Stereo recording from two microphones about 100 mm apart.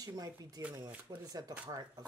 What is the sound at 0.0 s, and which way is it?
Speech, 40° right (ahead or behind).